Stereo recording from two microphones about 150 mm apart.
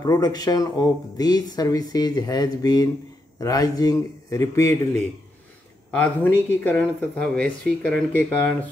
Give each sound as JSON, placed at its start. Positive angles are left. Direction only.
{"t": 0.0, "sound": "speech", "side_deg": 25}
{"t": 5.9, "sound": "speech", "side_deg": 10}